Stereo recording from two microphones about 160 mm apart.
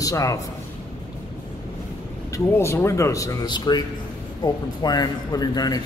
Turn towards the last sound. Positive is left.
turn(degrees=25)  # may be behind; listen again after turning